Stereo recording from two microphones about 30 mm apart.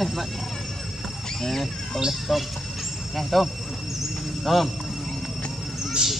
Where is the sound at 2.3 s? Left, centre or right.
Centre.